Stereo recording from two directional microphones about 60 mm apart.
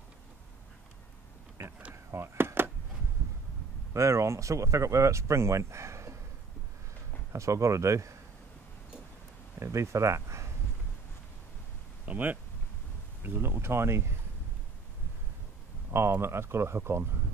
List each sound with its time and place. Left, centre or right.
1.6 s speech: right
2.0 s a sound: right
3.9 s speech: right
7.3 s speech: right
9.6 s speech: right
12.1 s speech: right
15.9 s speech: right